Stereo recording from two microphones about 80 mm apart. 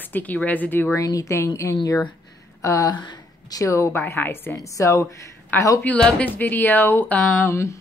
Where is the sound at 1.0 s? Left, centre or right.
Left.